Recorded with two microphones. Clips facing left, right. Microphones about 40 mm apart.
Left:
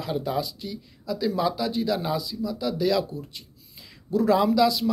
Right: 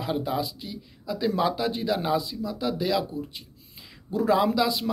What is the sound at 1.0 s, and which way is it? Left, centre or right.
Speech, right.